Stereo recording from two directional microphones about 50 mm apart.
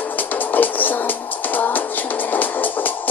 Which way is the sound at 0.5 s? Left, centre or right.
Left.